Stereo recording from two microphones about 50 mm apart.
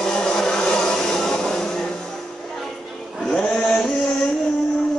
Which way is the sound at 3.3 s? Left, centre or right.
Centre.